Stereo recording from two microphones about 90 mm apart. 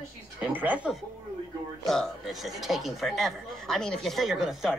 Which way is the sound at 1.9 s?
Centre (ahead or behind).